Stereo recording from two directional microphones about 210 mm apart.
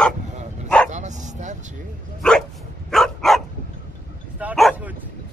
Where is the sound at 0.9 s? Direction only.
35° right (ahead or behind).